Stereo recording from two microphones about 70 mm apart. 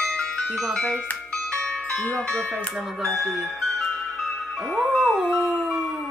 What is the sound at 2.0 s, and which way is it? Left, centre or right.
Speech, centre.